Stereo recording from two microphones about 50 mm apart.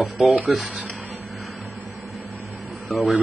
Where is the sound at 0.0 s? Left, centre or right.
Centre.